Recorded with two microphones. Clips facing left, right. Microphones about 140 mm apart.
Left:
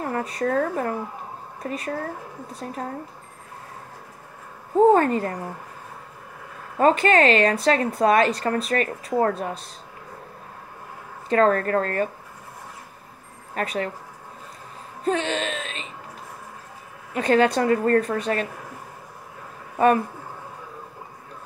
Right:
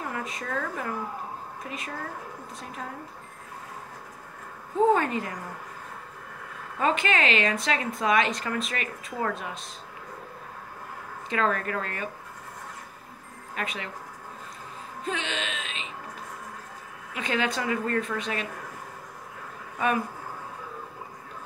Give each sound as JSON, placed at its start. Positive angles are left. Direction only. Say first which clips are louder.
{"t": 0.0, "sound": "a woman's voice", "louder": "left 8 dB", "side_deg": 40}
{"t": 4.7, "sound": "a woman's voice", "louder": "left 6 dB", "side_deg": 40}
{"t": 6.8, "sound": "a woman's voice", "louder": "left 8 dB", "side_deg": 40}
{"t": 11.2, "sound": "a woman's voice", "louder": "left 8 dB", "side_deg": 40}
{"t": 13.6, "sound": "a woman's voice", "louder": "left 8 dB", "side_deg": 40}
{"t": 15.0, "sound": "a woman's voice", "louder": "left 8 dB", "side_deg": 40}
{"t": 17.1, "sound": "a woman's voice", "louder": "left 10 dB", "side_deg": 40}